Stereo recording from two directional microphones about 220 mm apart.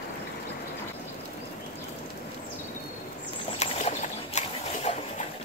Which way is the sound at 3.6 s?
30° left (ahead or behind).